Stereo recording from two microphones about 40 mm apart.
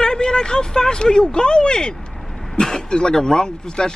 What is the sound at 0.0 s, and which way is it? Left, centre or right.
Speech, centre.